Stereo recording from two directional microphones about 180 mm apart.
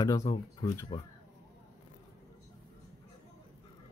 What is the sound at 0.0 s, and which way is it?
Speech, 20° left (ahead or behind).